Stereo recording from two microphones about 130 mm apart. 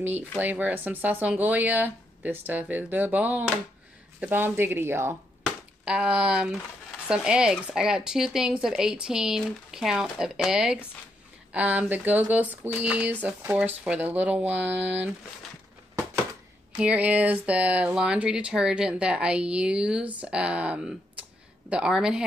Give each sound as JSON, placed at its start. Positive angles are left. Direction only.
{"t": 0.4, "sound": "speech", "side_deg": -15}
{"t": 5.9, "sound": "speech", "side_deg": -5}
{"t": 16.7, "sound": "speech", "side_deg": -10}